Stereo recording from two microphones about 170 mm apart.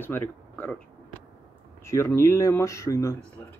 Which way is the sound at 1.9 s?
15° left (ahead or behind).